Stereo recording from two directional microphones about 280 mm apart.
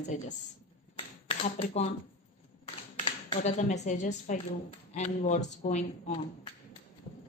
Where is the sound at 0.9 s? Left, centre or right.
Left.